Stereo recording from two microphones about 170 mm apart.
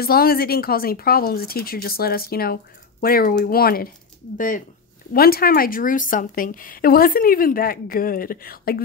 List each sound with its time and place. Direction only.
0.0 s speech: 60° left (ahead or behind)
4.4 s speech: 50° left (ahead or behind)
5.1 s speech: 60° left (ahead or behind)